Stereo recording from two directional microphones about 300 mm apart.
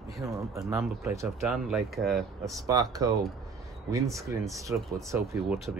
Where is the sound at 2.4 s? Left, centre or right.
Centre.